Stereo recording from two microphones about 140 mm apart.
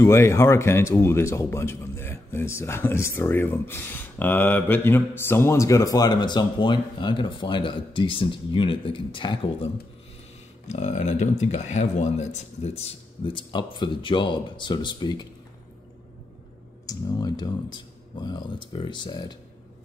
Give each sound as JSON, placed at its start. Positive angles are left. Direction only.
{"t": 0.0, "sound": "speech", "side_deg": 20}
{"t": 10.7, "sound": "speech", "side_deg": 55}
{"t": 16.8, "sound": "speech", "side_deg": 30}